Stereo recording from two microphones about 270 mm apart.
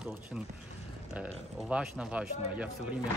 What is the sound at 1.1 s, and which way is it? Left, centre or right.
Speech, centre.